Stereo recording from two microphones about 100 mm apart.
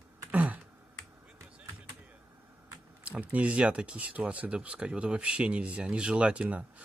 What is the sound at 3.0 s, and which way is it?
Speech, 15° right (ahead or behind).